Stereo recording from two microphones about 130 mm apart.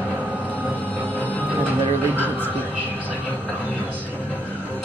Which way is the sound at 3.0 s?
10° left (ahead or behind).